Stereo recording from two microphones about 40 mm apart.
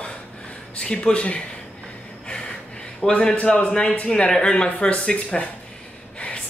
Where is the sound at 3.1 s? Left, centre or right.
Left.